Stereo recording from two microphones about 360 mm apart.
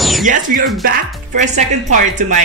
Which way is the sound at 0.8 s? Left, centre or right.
Right.